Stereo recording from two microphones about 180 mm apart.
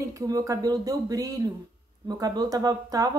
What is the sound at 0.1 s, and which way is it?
Speech, 20° right (ahead or behind).